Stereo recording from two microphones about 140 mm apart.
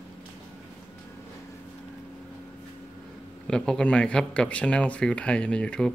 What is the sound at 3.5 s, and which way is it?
Speech, 5° left (ahead or behind).